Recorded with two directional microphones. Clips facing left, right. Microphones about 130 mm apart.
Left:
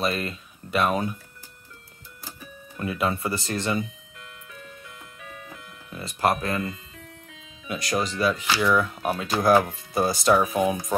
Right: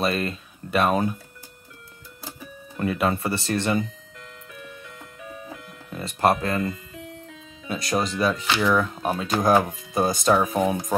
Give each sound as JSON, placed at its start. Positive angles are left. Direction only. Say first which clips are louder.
{"t": 0.0, "sound": "speech", "louder": "right 2 dB", "side_deg": -25}
{"t": 2.8, "sound": "speech", "louder": "right 3 dB", "side_deg": -30}
{"t": 5.9, "sound": "speech", "louder": "right 3 dB", "side_deg": -30}